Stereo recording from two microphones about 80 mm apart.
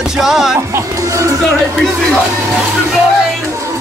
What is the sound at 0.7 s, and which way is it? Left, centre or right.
Speech, right.